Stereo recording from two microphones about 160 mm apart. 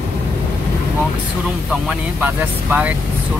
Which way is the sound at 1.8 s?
10° right (ahead or behind).